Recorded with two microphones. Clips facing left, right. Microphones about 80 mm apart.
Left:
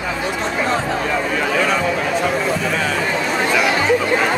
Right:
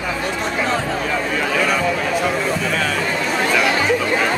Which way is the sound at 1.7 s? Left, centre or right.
Centre.